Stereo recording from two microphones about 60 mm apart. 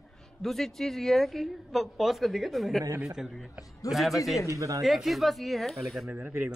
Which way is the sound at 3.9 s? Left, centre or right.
Centre.